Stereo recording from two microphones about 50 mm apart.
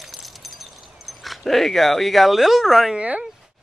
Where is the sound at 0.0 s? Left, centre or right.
Centre.